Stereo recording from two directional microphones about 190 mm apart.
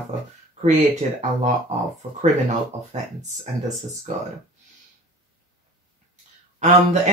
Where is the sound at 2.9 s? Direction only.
40° right (ahead or behind).